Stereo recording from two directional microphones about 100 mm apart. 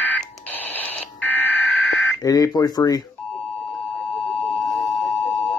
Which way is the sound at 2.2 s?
40° left (ahead or behind).